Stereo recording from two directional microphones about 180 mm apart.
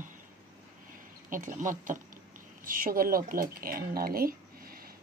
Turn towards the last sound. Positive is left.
turn(degrees=-55)  # may be behind; listen again after turning